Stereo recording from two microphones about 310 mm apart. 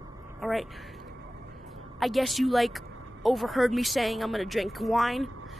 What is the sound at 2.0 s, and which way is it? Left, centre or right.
Speech, centre.